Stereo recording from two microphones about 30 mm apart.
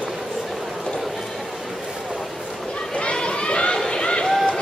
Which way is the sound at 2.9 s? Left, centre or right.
Left.